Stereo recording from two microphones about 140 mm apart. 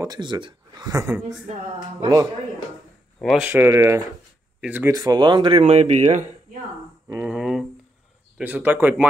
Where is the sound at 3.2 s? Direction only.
5° right (ahead or behind).